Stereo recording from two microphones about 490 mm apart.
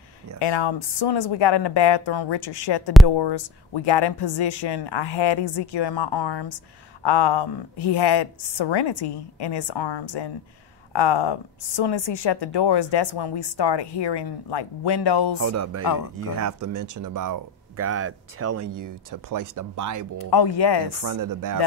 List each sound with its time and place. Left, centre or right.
0.4 s a woman's voice: left
15.4 s speech: right
15.8 s speech: left
16.3 s speech: right
20.2 s speech: left
21.0 s speech: right